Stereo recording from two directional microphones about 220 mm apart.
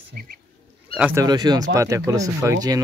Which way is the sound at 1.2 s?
20° right (ahead or behind).